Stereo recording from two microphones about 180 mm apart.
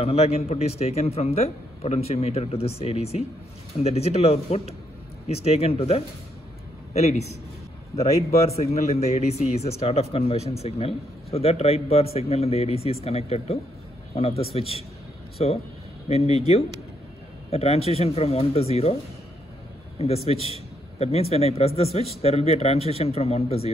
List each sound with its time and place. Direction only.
0.0 s a man's voice: 35° left (ahead or behind)
20.0 s a man's voice: 35° left (ahead or behind)